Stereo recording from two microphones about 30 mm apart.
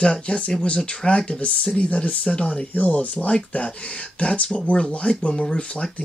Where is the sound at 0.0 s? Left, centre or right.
Left.